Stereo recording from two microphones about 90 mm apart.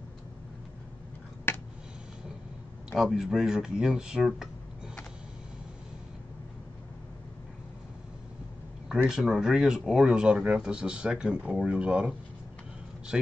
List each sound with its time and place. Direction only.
1.5 s a sound: 25° left (ahead or behind)
3.0 s speech: 5° right (ahead or behind)
8.8 s a man's voice: 10° right (ahead or behind)